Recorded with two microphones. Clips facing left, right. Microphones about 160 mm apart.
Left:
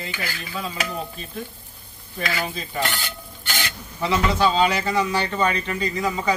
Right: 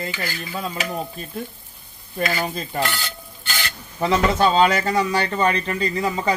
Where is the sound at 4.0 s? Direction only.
45° right (ahead or behind).